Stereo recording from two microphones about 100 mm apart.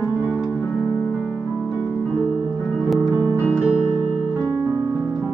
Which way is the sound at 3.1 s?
25° right (ahead or behind).